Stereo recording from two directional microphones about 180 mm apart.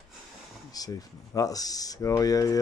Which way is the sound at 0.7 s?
20° left (ahead or behind).